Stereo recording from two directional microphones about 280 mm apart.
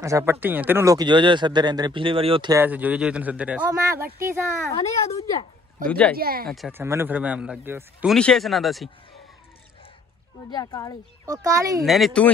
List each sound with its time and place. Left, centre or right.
0.0 s speech: centre
4.6 s speech: centre
5.9 s a man's voice: centre
6.1 s speech: right
6.4 s a man's voice: centre
10.5 s speech: centre
11.2 s speech: centre
11.8 s a man's voice: centre